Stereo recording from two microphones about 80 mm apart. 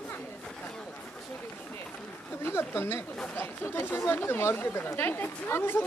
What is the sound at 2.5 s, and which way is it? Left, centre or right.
A woman's voice, left.